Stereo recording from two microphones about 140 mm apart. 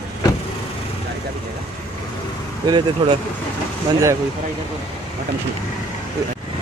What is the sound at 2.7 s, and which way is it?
Speech, 30° right (ahead or behind).